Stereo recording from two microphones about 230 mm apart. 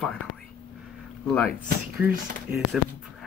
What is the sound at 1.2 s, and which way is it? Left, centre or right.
Speech, centre.